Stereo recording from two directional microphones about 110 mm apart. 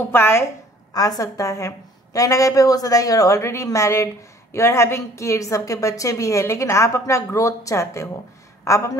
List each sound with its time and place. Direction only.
0.1 s a woman's voice: 25° left (ahead or behind)
0.9 s a woman's voice: 35° left (ahead or behind)